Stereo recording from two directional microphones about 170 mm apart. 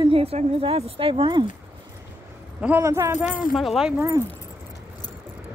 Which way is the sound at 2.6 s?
15° right (ahead or behind).